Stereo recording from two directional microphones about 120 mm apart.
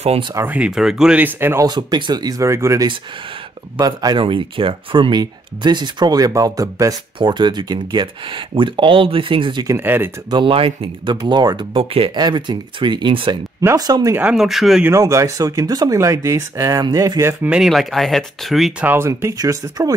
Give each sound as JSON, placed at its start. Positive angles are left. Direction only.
{"t": 0.5, "sound": "speech", "side_deg": -10}
{"t": 1.7, "sound": "speech", "side_deg": -35}
{"t": 4.2, "sound": "speech", "side_deg": -45}
{"t": 9.7, "sound": "speech", "side_deg": -20}
{"t": 10.3, "sound": "speech", "side_deg": -45}
{"t": 13.6, "sound": "speech", "side_deg": -30}
{"t": 14.1, "sound": "speech", "side_deg": -5}
{"t": 14.9, "sound": "speech", "side_deg": -25}
{"t": 17.5, "sound": "speech", "side_deg": -5}
{"t": 18.9, "sound": "speech", "side_deg": -25}